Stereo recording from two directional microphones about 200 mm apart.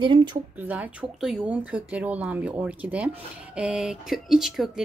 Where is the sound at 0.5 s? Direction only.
10° right (ahead or behind).